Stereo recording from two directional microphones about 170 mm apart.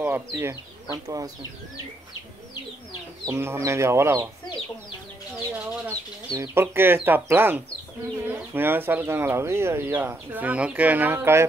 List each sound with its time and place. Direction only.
0.0 s speech: 10° right (ahead or behind)
3.3 s speech: 15° right (ahead or behind)
5.5 s speech: 15° right (ahead or behind)